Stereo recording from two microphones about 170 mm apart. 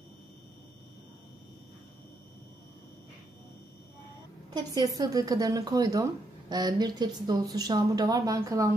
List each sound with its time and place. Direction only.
4.7 s speech: 20° right (ahead or behind)